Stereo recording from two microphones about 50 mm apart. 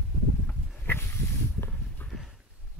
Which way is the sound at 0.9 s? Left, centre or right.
Left.